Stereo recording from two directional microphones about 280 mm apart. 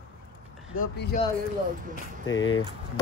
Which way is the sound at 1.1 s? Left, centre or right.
Left.